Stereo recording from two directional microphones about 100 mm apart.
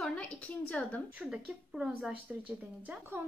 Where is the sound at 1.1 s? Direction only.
10° right (ahead or behind).